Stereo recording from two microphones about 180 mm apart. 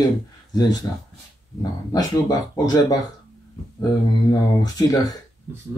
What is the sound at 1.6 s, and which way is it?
Speech, 20° left (ahead or behind).